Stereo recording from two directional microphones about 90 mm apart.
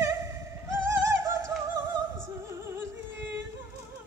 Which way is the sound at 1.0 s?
30° right (ahead or behind).